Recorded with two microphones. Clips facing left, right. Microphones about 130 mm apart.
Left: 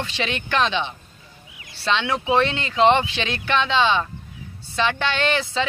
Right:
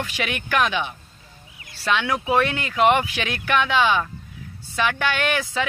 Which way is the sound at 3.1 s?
10° right (ahead or behind).